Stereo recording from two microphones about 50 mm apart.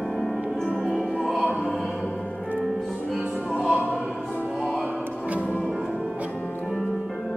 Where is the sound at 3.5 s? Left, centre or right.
Centre.